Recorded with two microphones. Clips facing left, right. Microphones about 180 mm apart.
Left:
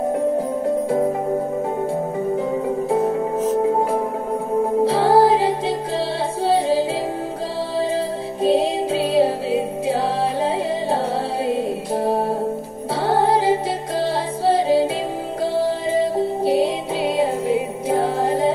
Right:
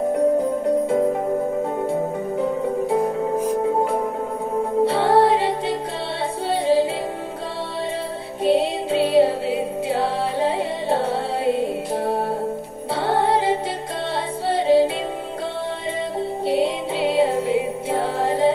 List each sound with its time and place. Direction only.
4.8 s music: centre (ahead or behind)
8.4 s music: centre (ahead or behind)
11.4 s music: centre (ahead or behind)
13.0 s music: centre (ahead or behind)
16.4 s music: centre (ahead or behind)